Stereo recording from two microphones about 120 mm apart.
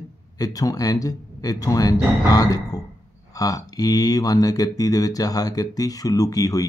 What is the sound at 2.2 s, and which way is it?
Music, 30° left (ahead or behind).